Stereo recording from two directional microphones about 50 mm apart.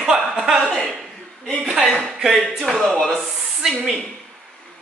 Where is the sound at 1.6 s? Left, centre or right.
Centre.